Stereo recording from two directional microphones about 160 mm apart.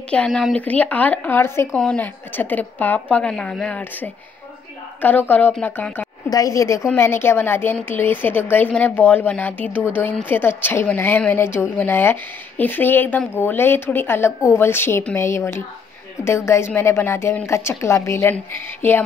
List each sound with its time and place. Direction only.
0.1 s a woman's voice: 5° left (ahead or behind)
5.3 s a woman's voice: 10° left (ahead or behind)